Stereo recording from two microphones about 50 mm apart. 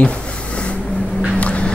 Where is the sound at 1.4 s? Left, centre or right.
Left.